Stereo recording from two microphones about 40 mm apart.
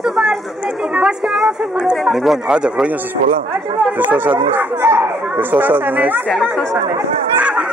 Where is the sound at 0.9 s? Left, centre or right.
Right.